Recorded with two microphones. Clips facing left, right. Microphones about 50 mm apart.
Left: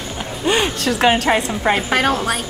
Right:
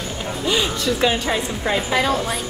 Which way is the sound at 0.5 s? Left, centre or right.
Left.